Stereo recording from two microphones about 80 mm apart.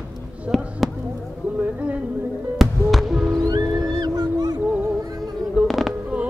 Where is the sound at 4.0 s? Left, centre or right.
Right.